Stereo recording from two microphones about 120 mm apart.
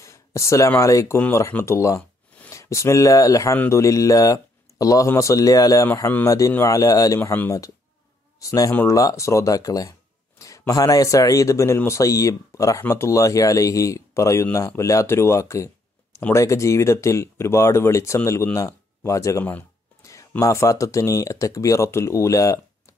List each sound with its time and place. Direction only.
0.0 s speech: 25° left (ahead or behind)
19.4 s a sound: 15° left (ahead or behind)
20.1 s speech: 25° left (ahead or behind)